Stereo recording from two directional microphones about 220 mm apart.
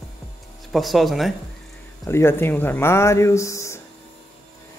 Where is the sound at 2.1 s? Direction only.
10° left (ahead or behind).